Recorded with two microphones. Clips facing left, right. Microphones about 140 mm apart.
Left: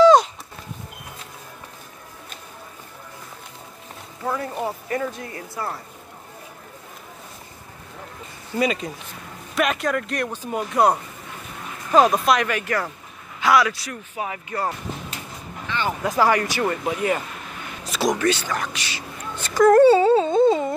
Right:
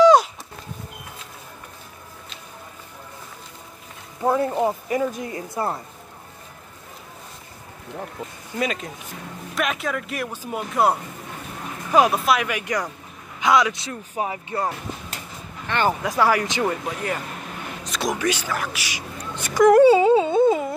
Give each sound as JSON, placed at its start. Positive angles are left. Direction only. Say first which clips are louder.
{"t": 0.0, "sound": "a sound", "louder": "left 1 dB", "side_deg": -10}
{"t": 4.2, "sound": "speech", "louder": "right 6 dB", "side_deg": -25}
{"t": 8.5, "sound": "a man's voice", "louder": "left 3 dB", "side_deg": 0}
{"t": 15.7, "sound": "speech", "louder": "right 4 dB", "side_deg": -55}
{"t": 16.1, "sound": "speech", "louder": "left 4 dB", "side_deg": -5}
{"t": 16.8, "sound": "speech", "louder": "left 5 dB", "side_deg": 5}
{"t": 17.8, "sound": "a sound", "louder": "left 4 dB", "side_deg": 5}
{"t": 18.2, "sound": "speech", "louder": "left 2 dB", "side_deg": -10}
{"t": 19.3, "sound": "wail", "louder": "even", "side_deg": -15}